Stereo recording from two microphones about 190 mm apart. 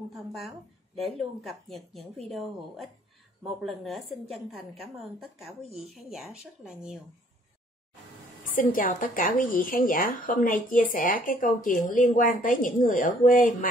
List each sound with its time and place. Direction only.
0.1 s speech: centre (ahead or behind)
8.5 s a woman's voice: 45° left (ahead or behind)